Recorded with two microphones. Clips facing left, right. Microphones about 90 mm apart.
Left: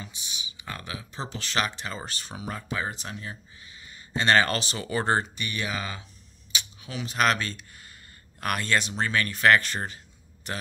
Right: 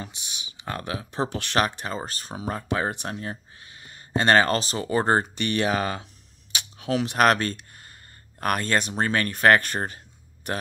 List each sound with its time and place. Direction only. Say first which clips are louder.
0.0 s speech: right 3 dB; 60° right (ahead or behind); by 2.6 s 35° right (ahead or behind)
2.7 s speech: right 6 dB; 55° right (ahead or behind); by 5.3 s 40° right (ahead or behind)
5.3 s speech: right 8 dB; 60° right (ahead or behind)
6.5 s a sound: right 10 dB; 60° right (ahead or behind)
8.4 s speech: right 3 dB; 45° right (ahead or behind)